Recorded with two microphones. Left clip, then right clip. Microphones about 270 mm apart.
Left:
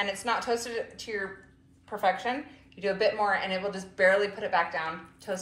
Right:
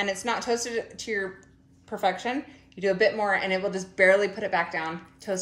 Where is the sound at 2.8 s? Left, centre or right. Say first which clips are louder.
Right 3 dB; right.